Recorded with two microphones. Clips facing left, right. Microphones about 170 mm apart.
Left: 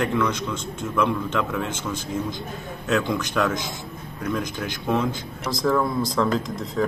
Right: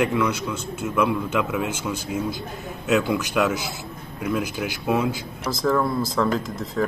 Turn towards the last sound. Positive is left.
turn(degrees=-5)  # may be behind; listen again after turning